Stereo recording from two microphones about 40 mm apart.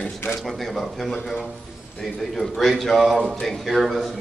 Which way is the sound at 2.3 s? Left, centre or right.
Centre.